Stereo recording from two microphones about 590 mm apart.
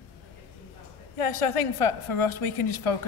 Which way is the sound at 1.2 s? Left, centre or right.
Left.